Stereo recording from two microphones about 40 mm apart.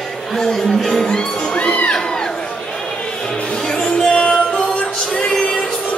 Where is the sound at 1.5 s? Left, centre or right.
Left.